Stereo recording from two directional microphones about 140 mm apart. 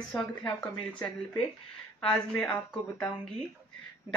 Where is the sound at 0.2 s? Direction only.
10° left (ahead or behind).